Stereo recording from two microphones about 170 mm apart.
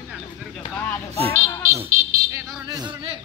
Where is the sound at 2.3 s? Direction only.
25° right (ahead or behind).